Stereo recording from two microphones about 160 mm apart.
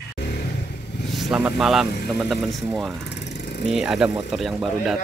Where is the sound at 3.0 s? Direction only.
90° left.